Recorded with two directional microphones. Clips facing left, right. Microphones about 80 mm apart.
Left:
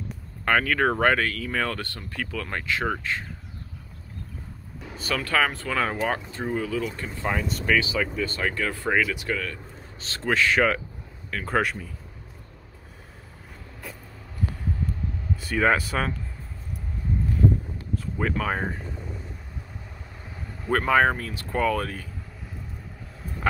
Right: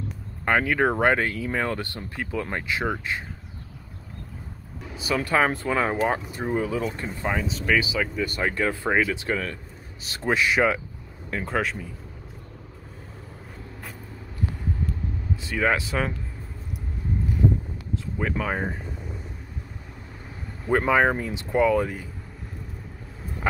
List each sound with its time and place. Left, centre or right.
0.5 s speech: centre
4.9 s speech: centre
5.2 s speech: right
6.5 s speech: right
7.2 s speech: centre; by 9.6 s right
9.9 s speech: centre
11.4 s speech: centre
15.4 s speech: centre
18.4 s speech: centre
20.6 s speech: centre